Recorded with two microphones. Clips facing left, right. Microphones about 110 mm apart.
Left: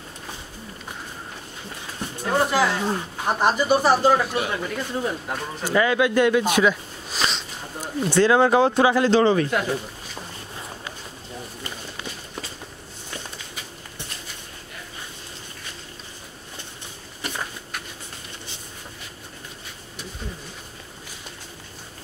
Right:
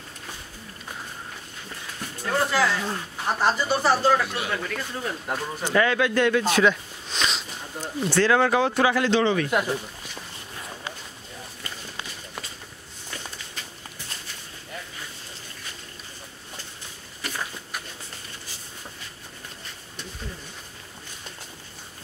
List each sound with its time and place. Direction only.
2.0 s a sound: 20° left (ahead or behind)
2.8 s speech: 20° left (ahead or behind)
5.3 s speech: 10° left (ahead or behind)
7.8 s speech: 20° left (ahead or behind)
9.1 s speech: 35° left (ahead or behind)